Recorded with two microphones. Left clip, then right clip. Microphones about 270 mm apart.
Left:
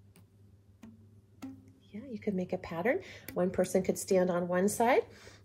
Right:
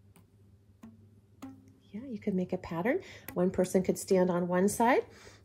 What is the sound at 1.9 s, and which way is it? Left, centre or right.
Speech, right.